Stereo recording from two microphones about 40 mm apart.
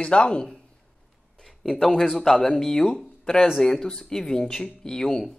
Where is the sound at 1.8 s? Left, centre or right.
Centre.